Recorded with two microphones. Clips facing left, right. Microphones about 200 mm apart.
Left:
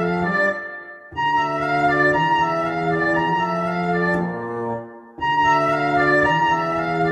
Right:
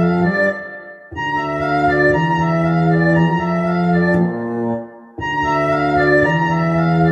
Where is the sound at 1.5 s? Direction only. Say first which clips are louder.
Right 5 dB; 30° right (ahead or behind).